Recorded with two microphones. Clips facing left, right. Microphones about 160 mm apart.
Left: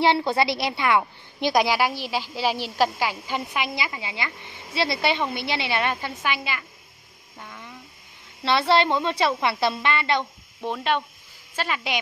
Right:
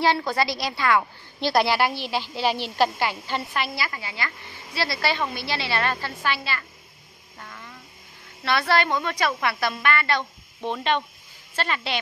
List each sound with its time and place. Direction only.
0.0 s a woman's voice: 25° left (ahead or behind)
7.3 s a sound: 10° left (ahead or behind)
8.5 s a woman's voice: 25° left (ahead or behind)
10.6 s a woman's voice: 5° left (ahead or behind)